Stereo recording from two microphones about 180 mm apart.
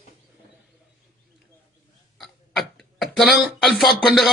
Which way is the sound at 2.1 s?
Centre (ahead or behind).